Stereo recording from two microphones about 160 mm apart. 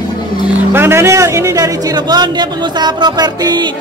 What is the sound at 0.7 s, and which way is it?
A man's voice, 15° right (ahead or behind).